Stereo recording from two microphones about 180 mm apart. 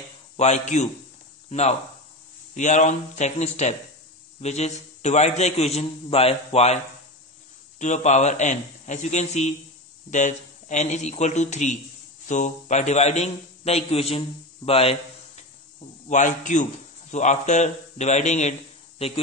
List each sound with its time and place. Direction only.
0.4 s a man's voice: 40° left (ahead or behind)
7.8 s a man's voice: 40° left (ahead or behind)
16.1 s a man's voice: 45° left (ahead or behind)